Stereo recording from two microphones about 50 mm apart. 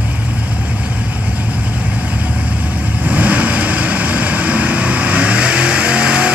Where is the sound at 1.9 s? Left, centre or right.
Right.